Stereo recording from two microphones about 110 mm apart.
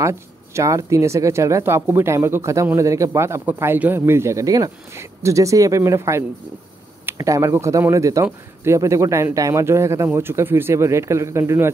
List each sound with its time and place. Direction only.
0.0 s speech: 25° right (ahead or behind)